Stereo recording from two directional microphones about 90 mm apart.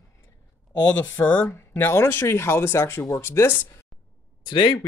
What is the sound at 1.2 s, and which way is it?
Speech, 20° left (ahead or behind).